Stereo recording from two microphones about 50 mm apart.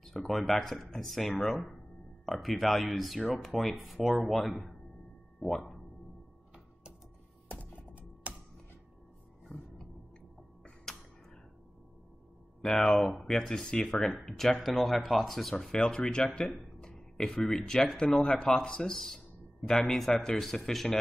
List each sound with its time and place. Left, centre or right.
0.0 s speech: centre
7.4 s music: left
8.3 s music: right
10.9 s a sound: centre
12.6 s speech: centre
13.7 s speech: centre
15.7 s speech: centre
16.4 s a sound: centre
17.5 s speech: centre
20.0 s speech: centre